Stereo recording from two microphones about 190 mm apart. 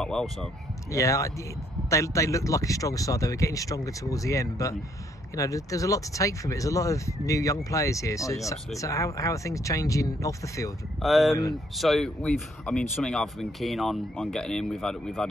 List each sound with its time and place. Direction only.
0.0 s speech: 5° left (ahead or behind)
0.9 s speech: 15° left (ahead or behind)
11.0 s speech: centre (ahead or behind)